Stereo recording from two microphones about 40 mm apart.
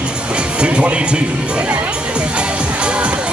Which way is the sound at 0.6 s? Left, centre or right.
Right.